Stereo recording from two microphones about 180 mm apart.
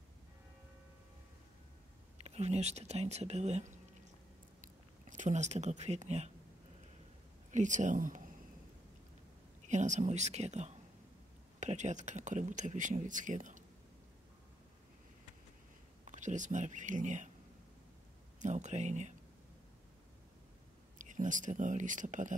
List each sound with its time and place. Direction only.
2.2 s speech: 35° right (ahead or behind)
5.1 s speech: 40° right (ahead or behind)
7.5 s speech: 45° right (ahead or behind)
9.7 s speech: 40° right (ahead or behind)
16.1 s speech: 45° right (ahead or behind)
18.4 s speech: 40° right (ahead or behind)
21.0 s speech: 45° right (ahead or behind)